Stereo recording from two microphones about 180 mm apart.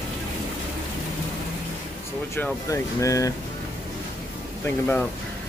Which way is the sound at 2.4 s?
15° left (ahead or behind).